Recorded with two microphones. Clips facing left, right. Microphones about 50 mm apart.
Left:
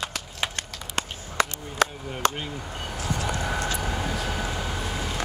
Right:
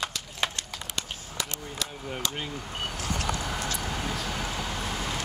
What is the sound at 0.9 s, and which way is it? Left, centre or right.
Chop, left.